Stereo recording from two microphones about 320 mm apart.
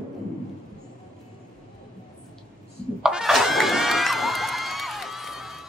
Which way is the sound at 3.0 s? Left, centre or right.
Centre.